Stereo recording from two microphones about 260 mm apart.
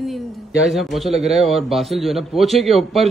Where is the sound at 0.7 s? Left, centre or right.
Centre.